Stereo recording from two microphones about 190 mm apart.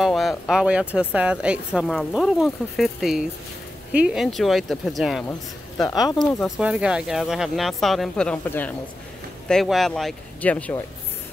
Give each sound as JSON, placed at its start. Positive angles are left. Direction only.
{"t": 0.0, "sound": "speech", "side_deg": 0}
{"t": 5.9, "sound": "speech", "side_deg": 20}
{"t": 6.4, "sound": "speech", "side_deg": -5}